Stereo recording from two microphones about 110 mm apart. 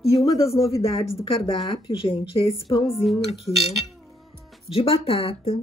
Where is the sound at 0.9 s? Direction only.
60° left (ahead or behind).